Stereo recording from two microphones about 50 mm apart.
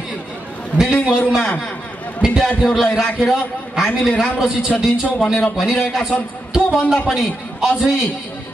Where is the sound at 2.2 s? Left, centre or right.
Centre.